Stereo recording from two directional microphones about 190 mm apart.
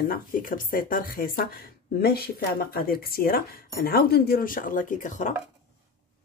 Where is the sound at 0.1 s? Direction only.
45° left (ahead or behind).